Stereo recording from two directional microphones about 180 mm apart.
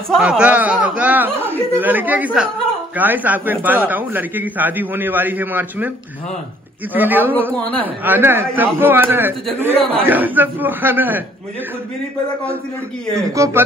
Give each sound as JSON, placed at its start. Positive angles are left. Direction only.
{"t": 0.1, "sound": "a man's voice", "side_deg": -5}
{"t": 6.9, "sound": "a man's voice", "side_deg": -10}
{"t": 13.4, "sound": "a man's voice", "side_deg": -15}